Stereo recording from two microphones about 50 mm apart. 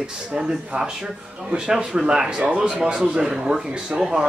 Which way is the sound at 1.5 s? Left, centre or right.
Centre.